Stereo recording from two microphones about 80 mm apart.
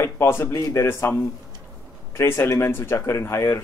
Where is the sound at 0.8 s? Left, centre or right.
Left.